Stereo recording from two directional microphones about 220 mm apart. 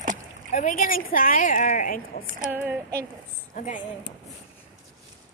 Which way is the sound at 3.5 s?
35° left (ahead or behind).